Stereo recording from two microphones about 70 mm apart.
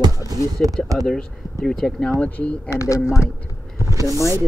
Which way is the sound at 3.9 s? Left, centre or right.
Right.